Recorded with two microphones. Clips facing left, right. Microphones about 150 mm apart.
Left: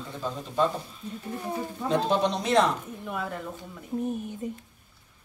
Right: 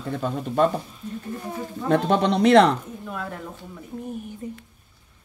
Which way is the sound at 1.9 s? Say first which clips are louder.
Right 5 dB; 65° right (ahead or behind).